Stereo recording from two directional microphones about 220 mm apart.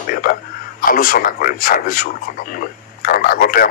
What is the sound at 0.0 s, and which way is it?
Speech, 40° left (ahead or behind).